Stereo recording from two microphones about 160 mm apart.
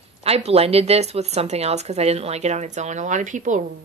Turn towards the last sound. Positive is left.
turn(degrees=-50)  # may be behind; listen again after turning